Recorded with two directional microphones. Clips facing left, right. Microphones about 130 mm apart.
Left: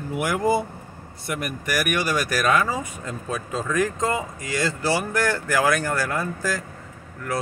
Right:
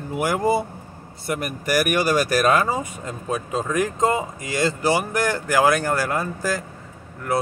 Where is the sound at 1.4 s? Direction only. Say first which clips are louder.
Right 4 dB; 30° right (ahead or behind).